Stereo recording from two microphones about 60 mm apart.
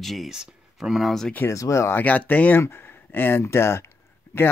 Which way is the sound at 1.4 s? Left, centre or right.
Left.